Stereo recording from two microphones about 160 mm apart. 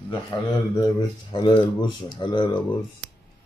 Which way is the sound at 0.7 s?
25° left (ahead or behind).